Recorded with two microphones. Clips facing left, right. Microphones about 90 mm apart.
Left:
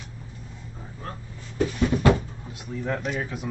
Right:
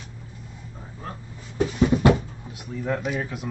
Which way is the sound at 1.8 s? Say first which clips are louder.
Right 3 dB; 15° right (ahead or behind).